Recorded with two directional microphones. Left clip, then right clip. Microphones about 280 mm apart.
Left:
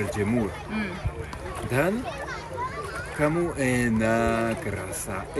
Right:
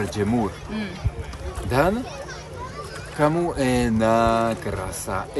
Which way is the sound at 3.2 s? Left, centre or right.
Centre.